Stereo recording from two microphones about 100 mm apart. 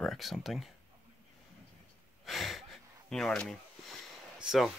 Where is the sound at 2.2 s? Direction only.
Centre (ahead or behind).